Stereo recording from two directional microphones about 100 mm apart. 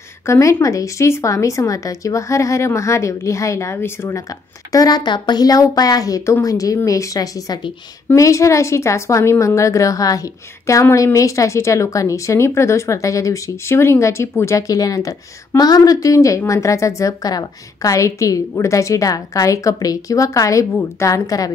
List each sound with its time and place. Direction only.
0.3 s a woman's voice: 30° left (ahead or behind)
4.3 s a woman's voice: 40° left (ahead or behind)